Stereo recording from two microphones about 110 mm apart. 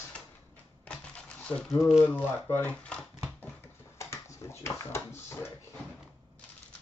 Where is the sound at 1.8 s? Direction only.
5° right (ahead or behind).